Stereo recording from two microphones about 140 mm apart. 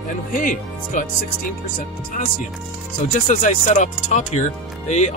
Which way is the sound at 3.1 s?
60° left (ahead or behind).